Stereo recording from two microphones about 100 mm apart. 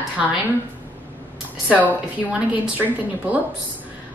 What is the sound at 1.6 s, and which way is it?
A woman's voice, 15° right (ahead or behind).